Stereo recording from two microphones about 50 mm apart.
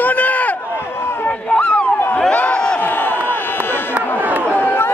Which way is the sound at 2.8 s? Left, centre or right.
Left.